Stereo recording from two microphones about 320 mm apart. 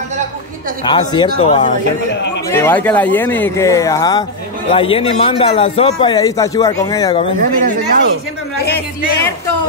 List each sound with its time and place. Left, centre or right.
0.8 s a man's voice: centre
2.5 s a man's voice: centre
7.3 s speech: right